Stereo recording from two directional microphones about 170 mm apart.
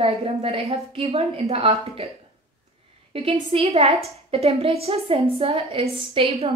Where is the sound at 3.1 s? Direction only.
30° right (ahead or behind).